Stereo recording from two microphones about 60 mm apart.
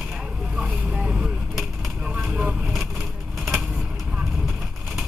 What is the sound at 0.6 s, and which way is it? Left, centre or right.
Vehicle, centre.